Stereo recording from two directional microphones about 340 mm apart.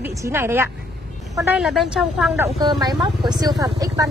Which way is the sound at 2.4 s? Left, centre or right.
Centre.